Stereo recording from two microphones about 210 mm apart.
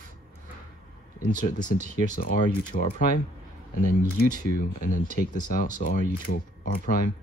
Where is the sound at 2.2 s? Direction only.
45° left (ahead or behind).